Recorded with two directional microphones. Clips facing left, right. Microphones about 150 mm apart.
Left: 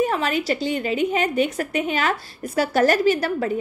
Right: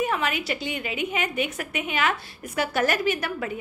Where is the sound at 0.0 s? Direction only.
35° left (ahead or behind).